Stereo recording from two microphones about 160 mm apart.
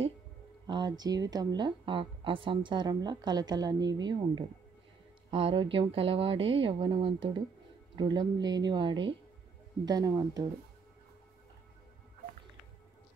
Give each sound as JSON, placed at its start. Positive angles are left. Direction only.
{"t": 0.7, "sound": "speech", "side_deg": -25}